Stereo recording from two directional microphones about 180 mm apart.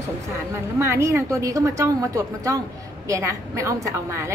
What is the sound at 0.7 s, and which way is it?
A woman's voice, 15° right (ahead or behind).